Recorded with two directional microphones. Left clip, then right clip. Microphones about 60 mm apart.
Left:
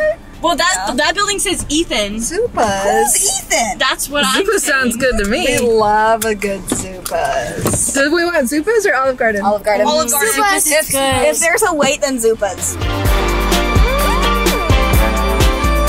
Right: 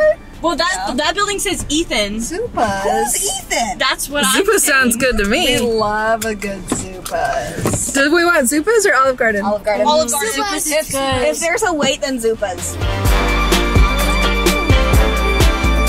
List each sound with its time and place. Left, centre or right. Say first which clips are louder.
0.4 s speech: left 2 dB; left
1.7 s a woman's voice: even; centre
2.3 s speech: left 3 dB; left
3.8 s speech: left 1 dB; centre
4.6 s speech: right 1 dB; right
5.8 s speech: left 4 dB; left
7.9 s speech: right 2 dB; right
9.4 s speech: left 2 dB; left
13.5 s music: left 1 dB; centre